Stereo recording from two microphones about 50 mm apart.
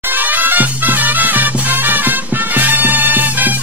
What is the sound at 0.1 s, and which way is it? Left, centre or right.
Music, right.